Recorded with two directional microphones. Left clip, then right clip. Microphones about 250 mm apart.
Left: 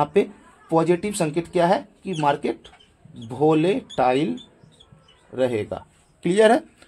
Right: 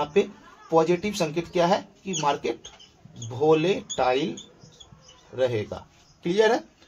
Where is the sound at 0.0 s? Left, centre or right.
Left.